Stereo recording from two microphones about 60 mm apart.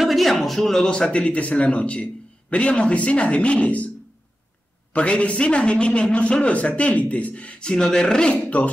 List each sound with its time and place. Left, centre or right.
0.0 s a man's voice: centre; by 3.9 s left
4.9 s a man's voice: centre
8.3 s a man's voice: left